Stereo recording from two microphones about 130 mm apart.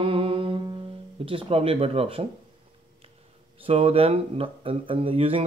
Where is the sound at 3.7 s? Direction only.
50° right (ahead or behind).